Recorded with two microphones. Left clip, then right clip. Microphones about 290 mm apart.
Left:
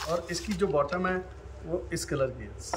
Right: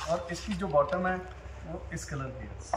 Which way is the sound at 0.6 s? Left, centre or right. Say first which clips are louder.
Even; centre.